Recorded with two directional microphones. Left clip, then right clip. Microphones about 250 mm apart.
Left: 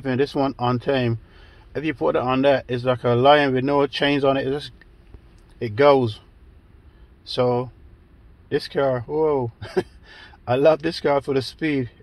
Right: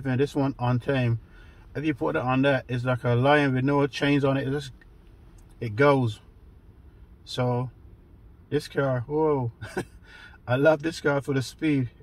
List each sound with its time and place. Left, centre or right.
0.0 s speech: left
5.8 s speech: left
7.3 s speech: left